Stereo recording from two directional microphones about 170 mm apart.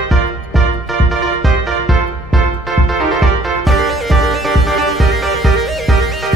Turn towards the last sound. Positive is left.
turn(degrees=0)  # may be behind; listen again after turning